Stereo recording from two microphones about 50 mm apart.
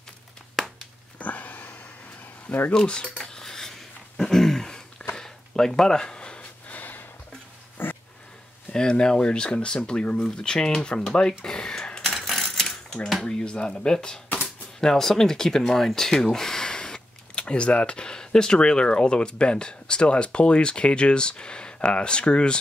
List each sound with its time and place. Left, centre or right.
0.6 s a sound: centre
1.1 s sniff: left
2.4 s speech: left
2.7 s speech: centre
3.3 s cutlery: centre
4.2 s throat clearing: centre
5.1 s a sound: centre
6.7 s sniff: left
7.7 s a sound: left
8.7 s speech: centre
12.1 s coin: centre
13.2 s speech: centre